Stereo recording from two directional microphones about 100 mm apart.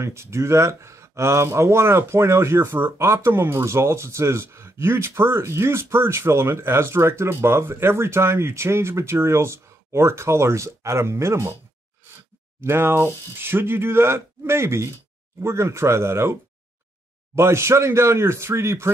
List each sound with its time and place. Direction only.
0.0 s speech: 30° right (ahead or behind)
12.5 s speech: 25° right (ahead or behind)
17.4 s speech: 25° right (ahead or behind)